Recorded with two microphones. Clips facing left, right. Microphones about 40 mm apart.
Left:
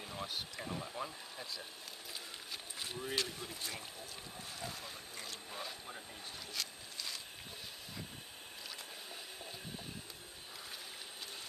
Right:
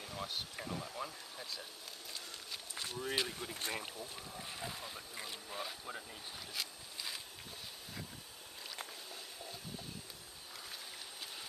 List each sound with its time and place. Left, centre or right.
0.0 s a sound: centre
0.3 s speech: centre
0.7 s speech: centre
3.0 s speech: centre
3.5 s speech: right
4.4 s speech: right
6.5 s a sound: centre